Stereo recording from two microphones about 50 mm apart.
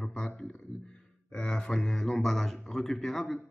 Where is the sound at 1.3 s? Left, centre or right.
Centre.